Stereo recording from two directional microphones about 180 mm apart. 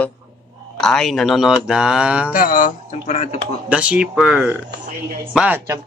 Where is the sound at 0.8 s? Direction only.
Centre (ahead or behind).